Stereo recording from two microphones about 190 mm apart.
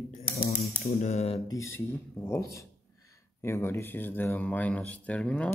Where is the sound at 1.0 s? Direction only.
35° left (ahead or behind).